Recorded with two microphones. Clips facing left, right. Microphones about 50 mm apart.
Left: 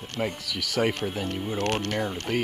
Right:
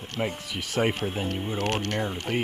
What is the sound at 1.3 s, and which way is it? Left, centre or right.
Speech, centre.